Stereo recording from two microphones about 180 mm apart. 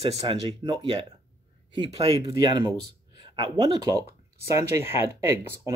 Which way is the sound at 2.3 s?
20° right (ahead or behind).